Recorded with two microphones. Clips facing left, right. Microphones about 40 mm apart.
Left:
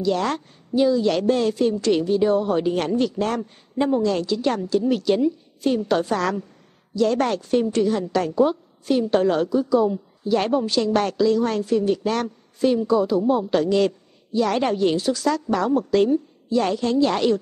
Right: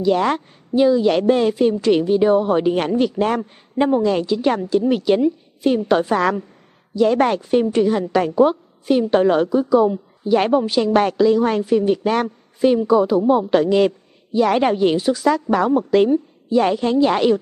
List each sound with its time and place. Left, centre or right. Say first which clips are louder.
0.0 s a woman's voice: right 5 dB; centre